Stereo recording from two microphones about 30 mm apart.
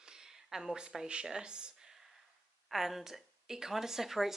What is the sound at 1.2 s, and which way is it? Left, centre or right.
Speech, right.